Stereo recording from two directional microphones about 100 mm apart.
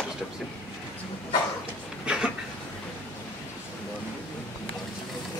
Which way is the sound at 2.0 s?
10° right (ahead or behind).